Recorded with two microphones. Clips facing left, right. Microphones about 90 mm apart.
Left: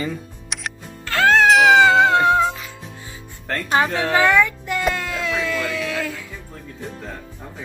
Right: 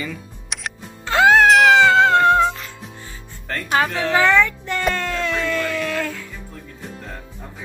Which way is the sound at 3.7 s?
20° left (ahead or behind).